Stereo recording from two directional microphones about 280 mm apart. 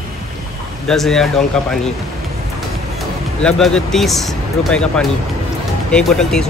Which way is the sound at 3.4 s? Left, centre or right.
Centre.